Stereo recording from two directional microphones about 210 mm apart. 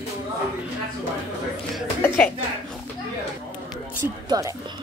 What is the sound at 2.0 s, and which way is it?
Speech, 5° left (ahead or behind).